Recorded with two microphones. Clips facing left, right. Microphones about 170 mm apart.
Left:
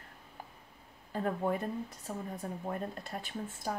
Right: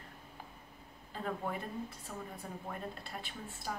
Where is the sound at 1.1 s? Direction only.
45° left (ahead or behind).